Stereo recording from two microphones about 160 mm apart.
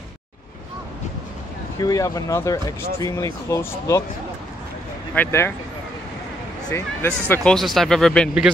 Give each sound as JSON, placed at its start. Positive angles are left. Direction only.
{"t": 1.8, "sound": "speech", "side_deg": 25}
{"t": 5.1, "sound": "speech", "side_deg": 15}
{"t": 6.6, "sound": "speech", "side_deg": 15}
{"t": 7.4, "sound": "speech", "side_deg": 0}